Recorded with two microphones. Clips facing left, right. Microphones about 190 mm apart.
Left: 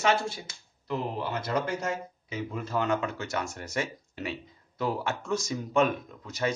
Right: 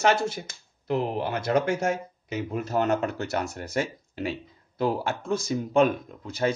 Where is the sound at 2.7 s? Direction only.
40° right (ahead or behind).